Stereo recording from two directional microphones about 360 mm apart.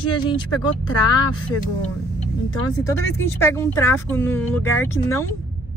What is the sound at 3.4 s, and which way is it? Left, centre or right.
Speech, centre.